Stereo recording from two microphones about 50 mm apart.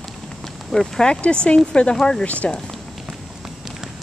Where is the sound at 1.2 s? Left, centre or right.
Left.